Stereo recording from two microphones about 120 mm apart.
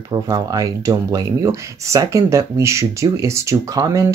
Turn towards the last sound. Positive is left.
turn(degrees=-30)  # may be behind; listen again after turning